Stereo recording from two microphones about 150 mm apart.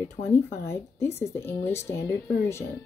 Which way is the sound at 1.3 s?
15° left (ahead or behind).